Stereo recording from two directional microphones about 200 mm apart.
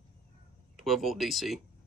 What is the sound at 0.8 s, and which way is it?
Speech, centre (ahead or behind).